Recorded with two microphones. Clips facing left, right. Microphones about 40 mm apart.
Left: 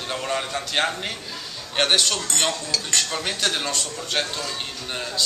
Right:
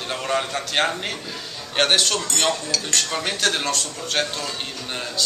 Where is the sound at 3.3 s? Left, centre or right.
Centre.